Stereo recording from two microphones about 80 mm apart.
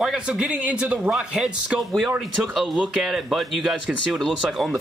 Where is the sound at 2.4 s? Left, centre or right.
Centre.